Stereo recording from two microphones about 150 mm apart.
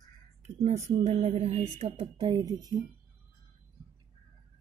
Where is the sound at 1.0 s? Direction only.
50° right (ahead or behind); by 2.8 s 25° right (ahead or behind).